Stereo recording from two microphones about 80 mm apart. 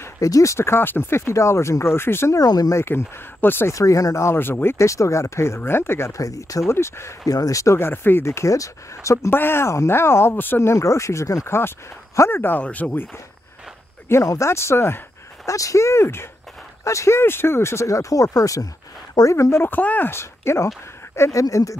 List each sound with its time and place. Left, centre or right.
0.0 s speech: left
2.3 s speech: left
2.7 s speech: left
3.7 s speech: left
6.7 s speech: left
7.2 s speech: left
11.4 s speech: left
14.2 s speech: left
15.4 s speech: left
19.3 s speech: left
20.1 s speech: left